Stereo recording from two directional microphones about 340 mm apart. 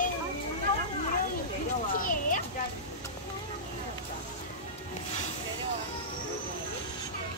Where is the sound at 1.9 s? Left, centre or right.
Left.